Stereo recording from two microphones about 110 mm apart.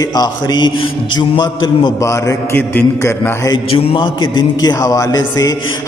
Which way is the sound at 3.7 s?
55° left (ahead or behind).